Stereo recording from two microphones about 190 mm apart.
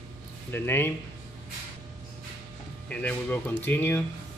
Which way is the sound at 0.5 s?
10° left (ahead or behind).